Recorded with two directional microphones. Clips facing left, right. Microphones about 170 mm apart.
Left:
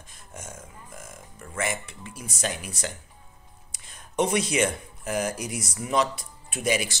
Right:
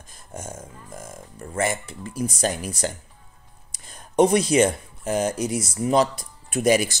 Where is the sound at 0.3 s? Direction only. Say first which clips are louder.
Right 6 dB; 30° right (ahead or behind).